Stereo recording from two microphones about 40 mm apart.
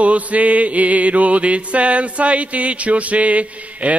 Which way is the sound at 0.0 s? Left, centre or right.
Right.